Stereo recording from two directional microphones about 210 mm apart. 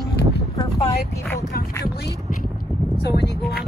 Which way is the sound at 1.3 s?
45° left (ahead or behind).